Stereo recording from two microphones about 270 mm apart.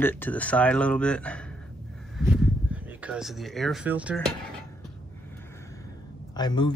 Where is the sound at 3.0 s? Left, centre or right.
Centre.